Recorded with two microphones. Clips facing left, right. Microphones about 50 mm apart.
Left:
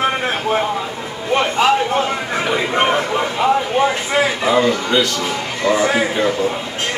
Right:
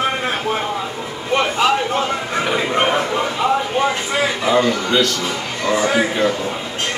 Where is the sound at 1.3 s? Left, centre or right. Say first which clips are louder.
Left 2 dB; centre.